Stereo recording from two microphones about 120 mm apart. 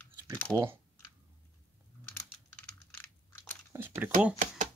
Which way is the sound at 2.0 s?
10° left (ahead or behind).